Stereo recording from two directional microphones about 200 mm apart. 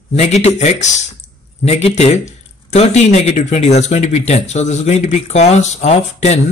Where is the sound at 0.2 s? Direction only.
35° left (ahead or behind).